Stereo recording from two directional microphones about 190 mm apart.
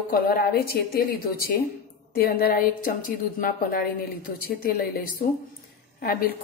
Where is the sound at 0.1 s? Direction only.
50° left (ahead or behind).